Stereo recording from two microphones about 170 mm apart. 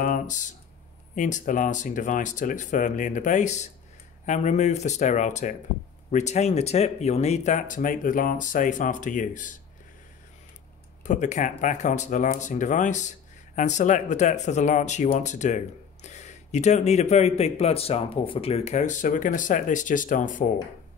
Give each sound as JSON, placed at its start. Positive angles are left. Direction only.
{"t": 0.0, "sound": "speech", "side_deg": 50}
{"t": 11.1, "sound": "speech", "side_deg": 45}